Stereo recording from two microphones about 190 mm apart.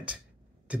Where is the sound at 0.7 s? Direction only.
5° right (ahead or behind).